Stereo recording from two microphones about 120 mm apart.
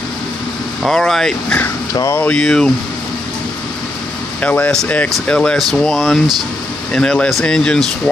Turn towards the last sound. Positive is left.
turn(degrees=5)  # may be behind; listen again after turning